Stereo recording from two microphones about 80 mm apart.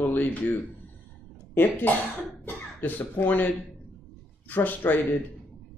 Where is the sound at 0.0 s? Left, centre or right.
Left.